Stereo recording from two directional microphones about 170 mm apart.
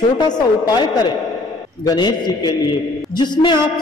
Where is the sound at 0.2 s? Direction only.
25° left (ahead or behind).